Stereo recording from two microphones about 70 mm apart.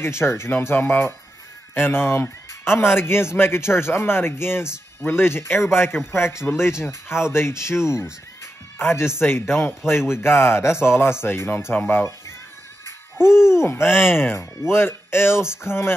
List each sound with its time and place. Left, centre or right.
0.0 s speech: left
13.8 s speech: centre
14.1 s speech: left